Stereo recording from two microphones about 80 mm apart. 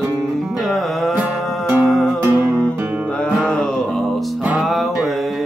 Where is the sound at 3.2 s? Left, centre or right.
Centre.